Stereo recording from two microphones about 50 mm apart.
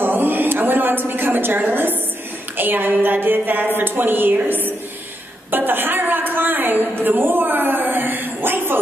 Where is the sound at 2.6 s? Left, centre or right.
Right.